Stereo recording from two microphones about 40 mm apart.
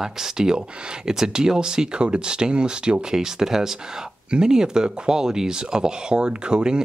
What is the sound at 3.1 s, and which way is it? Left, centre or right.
Speech, centre.